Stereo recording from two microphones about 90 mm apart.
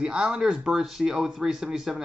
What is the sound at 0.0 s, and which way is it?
Speech, 10° right (ahead or behind).